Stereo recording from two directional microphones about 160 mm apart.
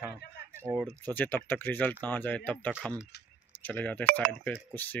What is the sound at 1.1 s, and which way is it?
Speech, 10° left (ahead or behind).